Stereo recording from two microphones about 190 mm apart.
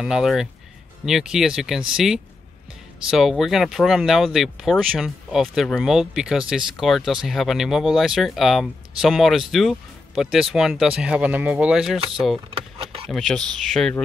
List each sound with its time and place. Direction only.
0.0 s speech: centre (ahead or behind)
12.7 s a sound: 30° right (ahead or behind)
13.1 s speech: centre (ahead or behind)